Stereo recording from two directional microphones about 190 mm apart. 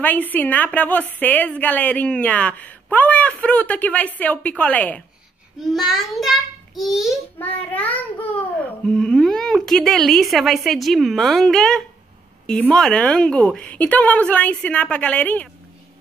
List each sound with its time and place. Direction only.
0.0 s a woman's voice: 10° left (ahead or behind)
5.9 s child singing: centre (ahead or behind)
7.3 s child singing: 10° left (ahead or behind)
12.4 s a woman's voice: 5° left (ahead or behind)